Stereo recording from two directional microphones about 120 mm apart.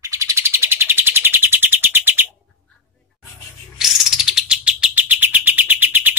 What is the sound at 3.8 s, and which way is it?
Bird, 5° right (ahead or behind).